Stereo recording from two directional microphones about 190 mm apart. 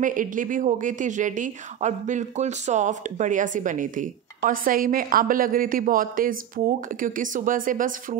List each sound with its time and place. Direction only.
0.0 s speech: 45° right (ahead or behind)